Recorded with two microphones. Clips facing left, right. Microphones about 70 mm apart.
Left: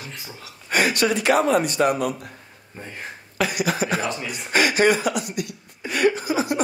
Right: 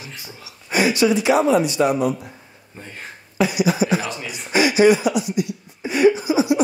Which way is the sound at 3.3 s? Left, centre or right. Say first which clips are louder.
Right 4 dB; left.